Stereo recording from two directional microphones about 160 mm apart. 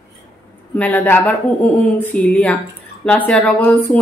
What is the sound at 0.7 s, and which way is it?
Speech, 10° left (ahead or behind).